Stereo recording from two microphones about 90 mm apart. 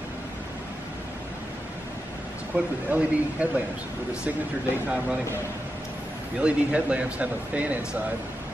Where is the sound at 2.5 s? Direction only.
15° right (ahead or behind).